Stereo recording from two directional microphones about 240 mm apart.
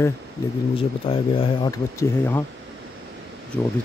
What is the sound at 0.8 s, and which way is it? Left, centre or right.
Speech, left.